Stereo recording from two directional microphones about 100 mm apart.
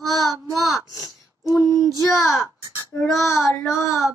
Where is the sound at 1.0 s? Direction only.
35° left (ahead or behind).